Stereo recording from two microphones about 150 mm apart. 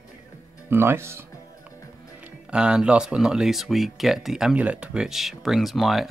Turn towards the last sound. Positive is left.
turn(degrees=0)  # may be behind; listen again after turning